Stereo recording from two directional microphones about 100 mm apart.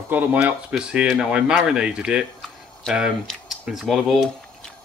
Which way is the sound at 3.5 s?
5° right (ahead or behind).